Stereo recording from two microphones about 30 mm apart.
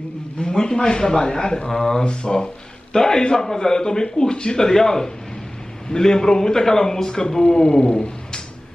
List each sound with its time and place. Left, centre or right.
0.4 s a man's voice: left